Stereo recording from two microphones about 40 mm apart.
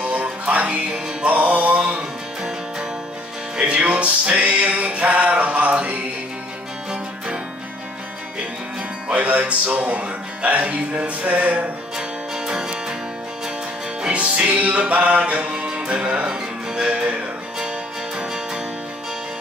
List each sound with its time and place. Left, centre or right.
0.0 s music: right
3.5 s music: right
9.1 s speech: right
12.4 s music: centre
14.1 s music: right
18.1 s music: centre